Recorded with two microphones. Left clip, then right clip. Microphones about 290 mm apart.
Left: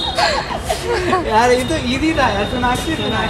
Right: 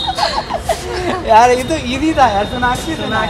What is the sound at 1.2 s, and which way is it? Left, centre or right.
Speech, right.